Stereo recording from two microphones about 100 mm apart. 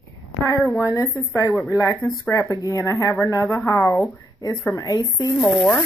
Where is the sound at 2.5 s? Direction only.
35° left (ahead or behind).